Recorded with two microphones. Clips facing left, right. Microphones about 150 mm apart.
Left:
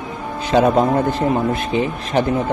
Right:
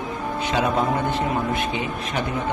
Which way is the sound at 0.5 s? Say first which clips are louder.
Left 8 dB; 40° left (ahead or behind).